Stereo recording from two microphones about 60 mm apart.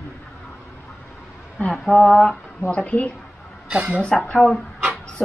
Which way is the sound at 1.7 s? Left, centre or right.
Centre.